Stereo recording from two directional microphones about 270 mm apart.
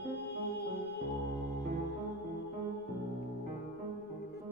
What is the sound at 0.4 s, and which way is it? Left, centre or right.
Music, left.